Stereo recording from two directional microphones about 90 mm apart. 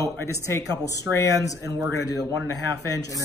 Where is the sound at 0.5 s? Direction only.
35° left (ahead or behind).